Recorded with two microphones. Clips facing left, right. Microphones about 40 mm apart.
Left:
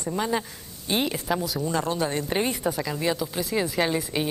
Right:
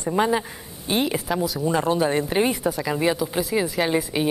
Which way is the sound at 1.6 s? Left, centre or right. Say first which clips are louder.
Right 5 dB; centre.